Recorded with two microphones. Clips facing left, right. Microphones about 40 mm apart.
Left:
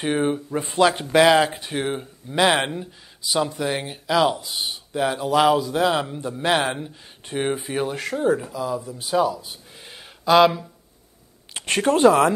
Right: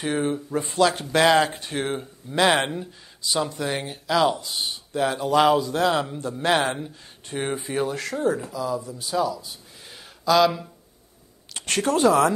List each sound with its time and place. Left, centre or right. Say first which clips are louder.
0.0 s speech: left 3 dB; left
1.1 s speech: left 3 dB; centre; by 12.3 s left